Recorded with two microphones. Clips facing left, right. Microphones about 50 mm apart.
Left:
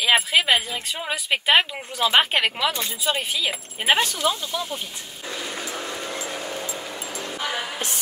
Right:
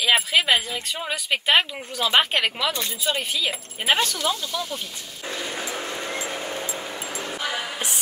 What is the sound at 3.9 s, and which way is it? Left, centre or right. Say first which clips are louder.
Speech: left 1 dB; left.